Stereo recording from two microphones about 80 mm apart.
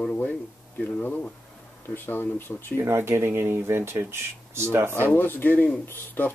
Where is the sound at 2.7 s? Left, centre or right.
Right.